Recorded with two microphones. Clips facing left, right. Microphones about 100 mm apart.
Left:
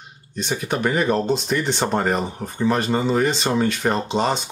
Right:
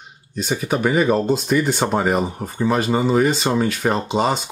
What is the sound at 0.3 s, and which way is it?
Speech, 5° right (ahead or behind).